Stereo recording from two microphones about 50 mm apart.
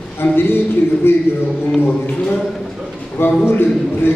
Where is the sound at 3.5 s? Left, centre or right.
Left.